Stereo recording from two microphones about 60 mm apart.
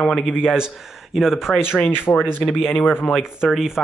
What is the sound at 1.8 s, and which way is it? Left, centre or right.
Speech, left.